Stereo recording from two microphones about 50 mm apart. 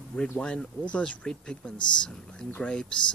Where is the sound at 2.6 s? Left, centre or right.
Centre.